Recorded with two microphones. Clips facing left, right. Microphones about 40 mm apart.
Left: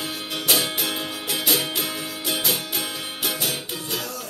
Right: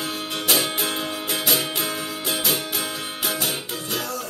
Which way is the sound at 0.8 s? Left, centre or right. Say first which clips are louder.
Right 1 dB; centre.